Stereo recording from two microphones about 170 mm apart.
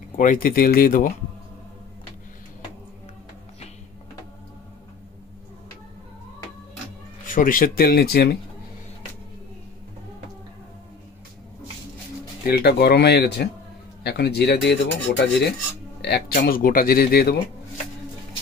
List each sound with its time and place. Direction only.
0.1 s speech: 50° left (ahead or behind)
7.2 s speech: 50° left (ahead or behind)
12.4 s speech: 65° left (ahead or behind)
16.0 s speech: 70° left (ahead or behind)